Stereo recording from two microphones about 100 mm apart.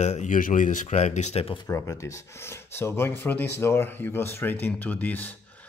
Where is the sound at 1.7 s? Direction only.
30° left (ahead or behind).